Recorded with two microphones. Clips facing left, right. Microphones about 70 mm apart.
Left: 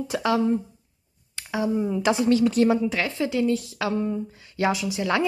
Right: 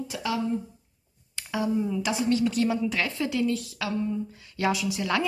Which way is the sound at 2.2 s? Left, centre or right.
Left.